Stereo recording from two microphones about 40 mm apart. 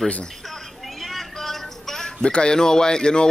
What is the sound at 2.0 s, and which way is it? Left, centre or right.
Speech, left.